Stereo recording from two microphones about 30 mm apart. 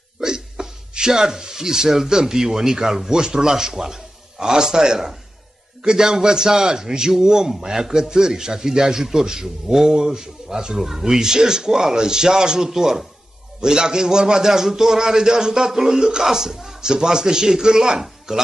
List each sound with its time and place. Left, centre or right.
0.2 s a man's voice: centre
10.8 s a man's voice: centre
13.6 s a man's voice: right